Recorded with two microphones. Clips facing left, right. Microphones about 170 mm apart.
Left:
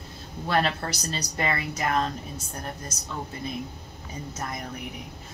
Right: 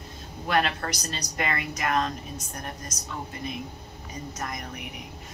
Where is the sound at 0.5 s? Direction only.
30° left (ahead or behind).